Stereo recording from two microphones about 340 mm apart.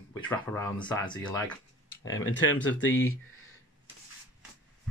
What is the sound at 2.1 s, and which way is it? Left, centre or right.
Speech, left.